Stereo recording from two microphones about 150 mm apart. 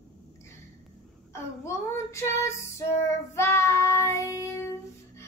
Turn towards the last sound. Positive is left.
turn(degrees=20)  # may be behind; listen again after turning